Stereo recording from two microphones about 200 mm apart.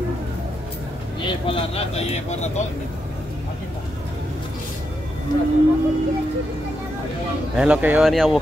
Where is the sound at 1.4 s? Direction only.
30° left (ahead or behind).